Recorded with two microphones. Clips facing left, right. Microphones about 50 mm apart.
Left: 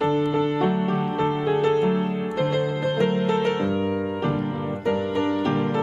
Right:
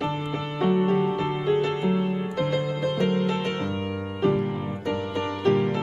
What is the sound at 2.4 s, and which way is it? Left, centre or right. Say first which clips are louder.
Music: left 3 dB; left.